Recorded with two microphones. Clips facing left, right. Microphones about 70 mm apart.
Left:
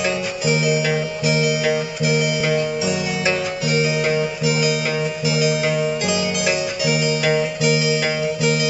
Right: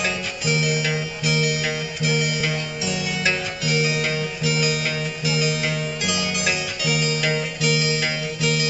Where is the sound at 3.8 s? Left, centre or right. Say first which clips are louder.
Left 5 dB; left.